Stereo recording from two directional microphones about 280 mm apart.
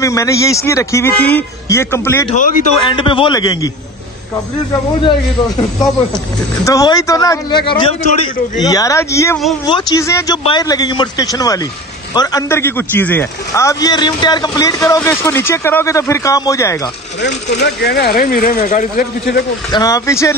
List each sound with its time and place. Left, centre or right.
0.0 s a man's voice: centre
2.3 s a man's voice: left
6.1 s a man's voice: centre
17.5 s speech: left
19.7 s a man's voice: centre